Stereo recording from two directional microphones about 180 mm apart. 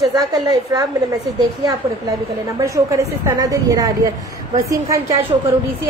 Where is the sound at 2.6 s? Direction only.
15° right (ahead or behind).